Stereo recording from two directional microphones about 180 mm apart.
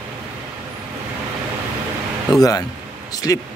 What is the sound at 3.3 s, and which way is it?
Speech, 20° left (ahead or behind).